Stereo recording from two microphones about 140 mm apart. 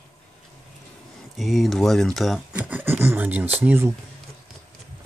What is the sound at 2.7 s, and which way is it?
Speech, 15° right (ahead or behind).